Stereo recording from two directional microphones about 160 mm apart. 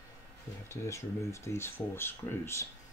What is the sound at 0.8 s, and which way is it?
Speech, 15° left (ahead or behind).